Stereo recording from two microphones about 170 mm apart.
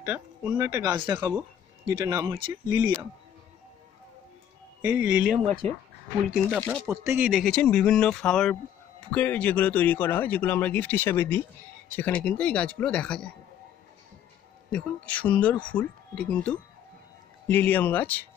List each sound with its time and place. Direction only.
0.0 s speech: 10° right (ahead or behind)
1.1 s speech: 10° right (ahead or behind)
2.8 s speech: 10° right (ahead or behind)
4.8 s speech: 10° right (ahead or behind)
5.6 s speech: 10° left (ahead or behind)
6.9 s speech: 10° right (ahead or behind); by 13.3 s 5° left (ahead or behind)
14.7 s speech: 5° left (ahead or behind)